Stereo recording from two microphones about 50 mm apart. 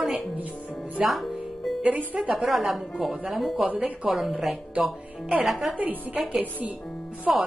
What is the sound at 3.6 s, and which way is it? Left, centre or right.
Speech, right.